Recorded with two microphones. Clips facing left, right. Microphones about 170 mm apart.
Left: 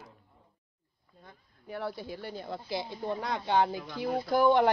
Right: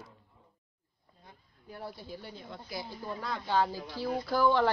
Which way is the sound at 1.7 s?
70° left (ahead or behind).